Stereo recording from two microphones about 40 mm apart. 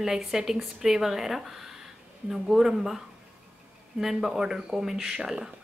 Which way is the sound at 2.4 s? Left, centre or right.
Centre.